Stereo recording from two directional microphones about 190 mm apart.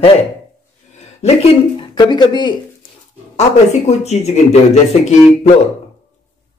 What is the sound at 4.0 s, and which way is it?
Speech, 35° left (ahead or behind).